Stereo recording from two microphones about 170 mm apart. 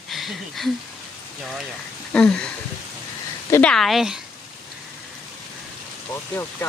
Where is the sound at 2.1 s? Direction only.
5° left (ahead or behind).